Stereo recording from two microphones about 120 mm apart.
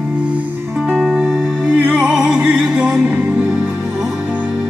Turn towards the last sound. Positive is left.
turn(degrees=-10)  # may be behind; listen again after turning